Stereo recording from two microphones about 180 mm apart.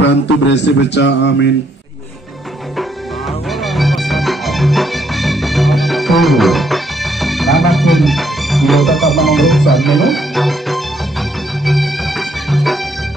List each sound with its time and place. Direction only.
0.0 s speech: 75° left (ahead or behind)
3.7 s music: centre (ahead or behind)
11.6 s bagpipes: centre (ahead or behind)
12.4 s music: centre (ahead or behind)